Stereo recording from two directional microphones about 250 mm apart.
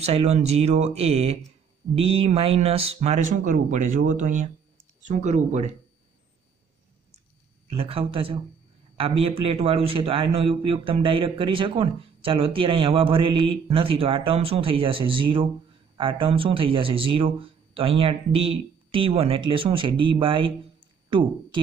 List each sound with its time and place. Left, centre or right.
0.0 s speech: right
7.7 s speech: right